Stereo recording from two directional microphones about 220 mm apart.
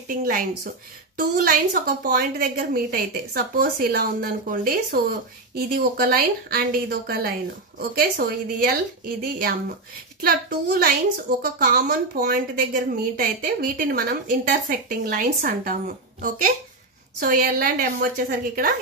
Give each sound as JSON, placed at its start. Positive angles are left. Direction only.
{"t": 0.1, "sound": "speech", "side_deg": -40}